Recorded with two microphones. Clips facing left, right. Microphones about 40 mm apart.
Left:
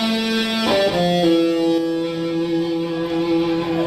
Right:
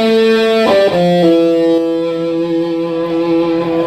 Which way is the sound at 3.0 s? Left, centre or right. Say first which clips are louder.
Right 6 dB; centre.